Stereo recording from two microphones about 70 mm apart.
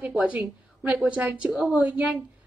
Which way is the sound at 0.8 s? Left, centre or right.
Right.